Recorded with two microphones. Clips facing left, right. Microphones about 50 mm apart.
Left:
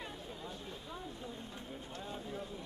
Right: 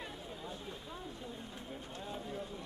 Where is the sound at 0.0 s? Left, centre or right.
Centre.